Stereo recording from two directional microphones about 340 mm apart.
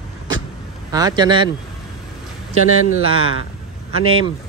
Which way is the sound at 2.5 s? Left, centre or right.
Right.